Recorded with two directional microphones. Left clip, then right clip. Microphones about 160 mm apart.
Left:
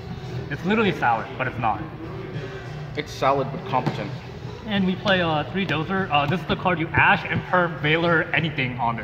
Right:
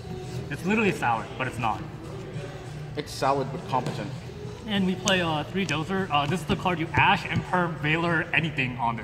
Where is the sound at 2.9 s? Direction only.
45° right (ahead or behind).